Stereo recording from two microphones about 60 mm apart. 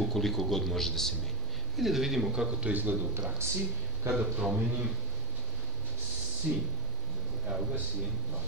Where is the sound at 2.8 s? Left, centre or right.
Right.